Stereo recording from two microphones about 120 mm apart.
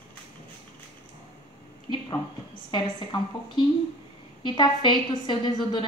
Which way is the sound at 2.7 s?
40° left (ahead or behind).